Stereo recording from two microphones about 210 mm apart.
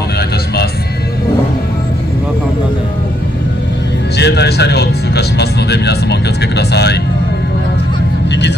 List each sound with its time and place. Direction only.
4.2 s speech: 55° left (ahead or behind)